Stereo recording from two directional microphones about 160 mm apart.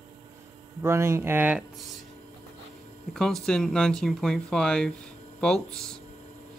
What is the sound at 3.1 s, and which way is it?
Speech, 5° left (ahead or behind).